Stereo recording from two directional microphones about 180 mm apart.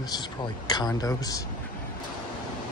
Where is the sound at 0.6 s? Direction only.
20° left (ahead or behind).